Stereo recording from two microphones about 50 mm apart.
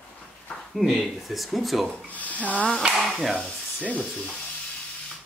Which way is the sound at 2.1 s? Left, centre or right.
Left.